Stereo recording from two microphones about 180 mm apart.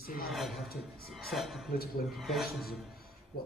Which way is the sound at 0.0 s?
55° left (ahead or behind).